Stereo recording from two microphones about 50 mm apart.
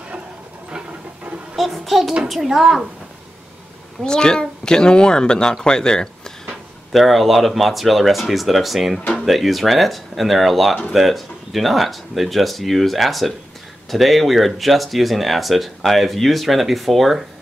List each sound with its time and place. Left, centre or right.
0.7 s a sound: centre
1.6 s child singing: centre
2.2 s speech: centre
4.0 s speech: centre
6.9 s speech: centre